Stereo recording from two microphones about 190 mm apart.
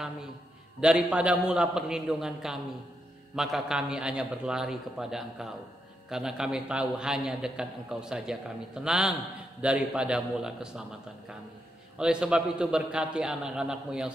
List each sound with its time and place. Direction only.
0.7 s a man's voice: 5° right (ahead or behind)